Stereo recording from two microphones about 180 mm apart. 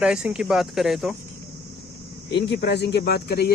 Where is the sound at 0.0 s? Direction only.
5° right (ahead or behind).